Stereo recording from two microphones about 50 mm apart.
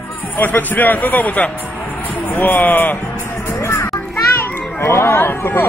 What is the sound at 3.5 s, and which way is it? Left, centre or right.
Music, left.